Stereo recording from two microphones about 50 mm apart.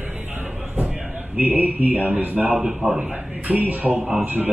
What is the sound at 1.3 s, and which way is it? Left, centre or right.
Speech, right.